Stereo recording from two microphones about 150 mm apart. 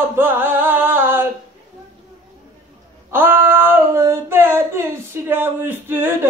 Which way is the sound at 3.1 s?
15° right (ahead or behind).